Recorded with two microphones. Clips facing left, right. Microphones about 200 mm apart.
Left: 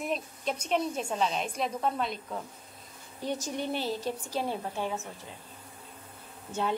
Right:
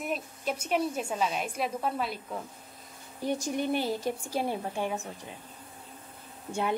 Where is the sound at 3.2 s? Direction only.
10° right (ahead or behind).